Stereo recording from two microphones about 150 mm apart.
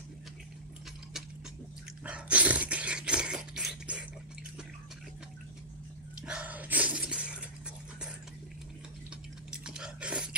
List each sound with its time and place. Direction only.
2.0 s dog: 10° right (ahead or behind)
6.2 s shatter: 10° right (ahead or behind)
9.5 s chewing: 5° right (ahead or behind)